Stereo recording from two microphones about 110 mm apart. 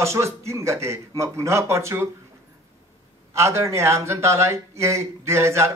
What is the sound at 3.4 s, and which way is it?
Speech, 25° right (ahead or behind).